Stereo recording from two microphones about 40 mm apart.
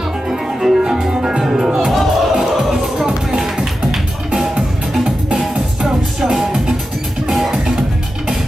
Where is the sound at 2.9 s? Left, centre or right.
Centre.